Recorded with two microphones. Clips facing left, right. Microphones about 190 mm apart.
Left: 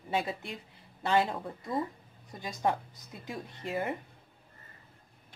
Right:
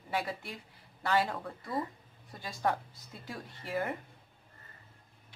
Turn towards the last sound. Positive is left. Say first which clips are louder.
# left 1 dB
turn(degrees=20)  # may be behind; listen again after turning